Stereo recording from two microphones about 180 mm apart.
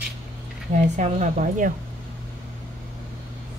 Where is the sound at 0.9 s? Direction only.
40° right (ahead or behind).